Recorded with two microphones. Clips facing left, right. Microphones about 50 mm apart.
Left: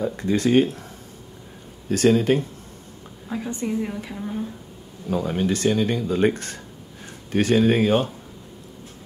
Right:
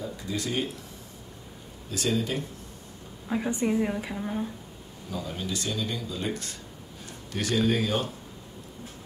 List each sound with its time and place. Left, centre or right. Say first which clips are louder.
0.0 s speech: left 11 dB; left
1.9 s speech: left 11 dB; left
3.3 s a woman's voice: even; centre
5.1 s speech: left 10 dB; left